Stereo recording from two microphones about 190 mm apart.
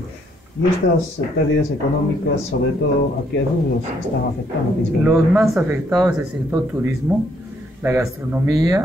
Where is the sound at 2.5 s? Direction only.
60° left (ahead or behind).